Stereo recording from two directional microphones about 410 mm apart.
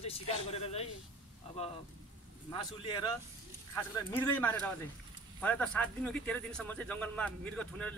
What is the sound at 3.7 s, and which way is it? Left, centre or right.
Speech, centre.